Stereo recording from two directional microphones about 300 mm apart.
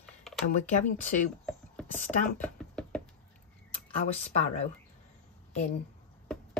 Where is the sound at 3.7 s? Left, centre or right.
Left.